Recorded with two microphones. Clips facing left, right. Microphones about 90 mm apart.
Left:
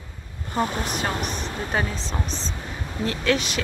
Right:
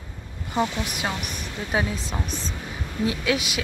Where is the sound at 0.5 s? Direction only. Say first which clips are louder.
Even; 45° left (ahead or behind).